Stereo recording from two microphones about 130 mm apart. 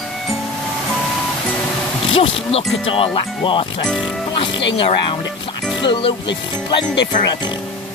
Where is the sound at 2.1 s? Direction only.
45° left (ahead or behind).